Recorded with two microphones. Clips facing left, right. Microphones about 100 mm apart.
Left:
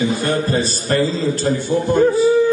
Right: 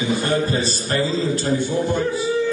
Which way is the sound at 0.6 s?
50° left (ahead or behind).